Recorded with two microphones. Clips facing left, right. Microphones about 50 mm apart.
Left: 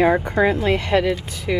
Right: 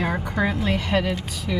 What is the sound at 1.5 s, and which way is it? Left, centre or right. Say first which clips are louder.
Speech: left 5 dB; left.